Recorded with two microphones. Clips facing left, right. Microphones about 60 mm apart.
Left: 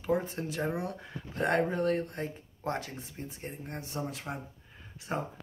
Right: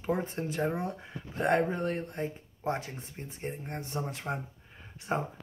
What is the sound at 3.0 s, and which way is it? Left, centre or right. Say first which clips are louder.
Speech: right 1 dB; right.